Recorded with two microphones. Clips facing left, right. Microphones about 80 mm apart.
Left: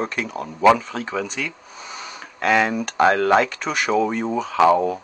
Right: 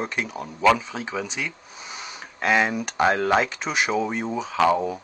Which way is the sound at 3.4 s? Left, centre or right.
Left.